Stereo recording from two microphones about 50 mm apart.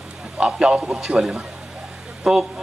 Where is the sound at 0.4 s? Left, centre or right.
Centre.